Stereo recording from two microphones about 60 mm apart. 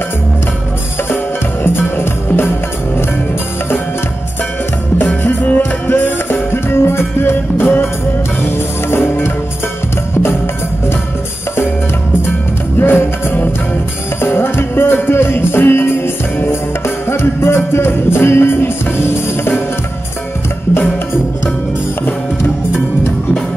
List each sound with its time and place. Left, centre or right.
1.1 s music: left
4.9 s music: left
12.7 s music: left